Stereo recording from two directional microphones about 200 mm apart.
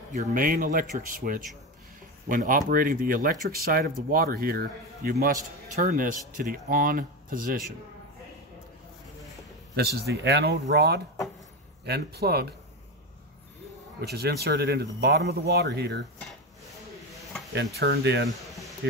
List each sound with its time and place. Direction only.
0.1 s speech: 40° right (ahead or behind)
9.8 s speech: 55° right (ahead or behind)
14.0 s speech: 55° right (ahead or behind)
17.7 s speech: 50° right (ahead or behind)
18.4 s a sound: centre (ahead or behind)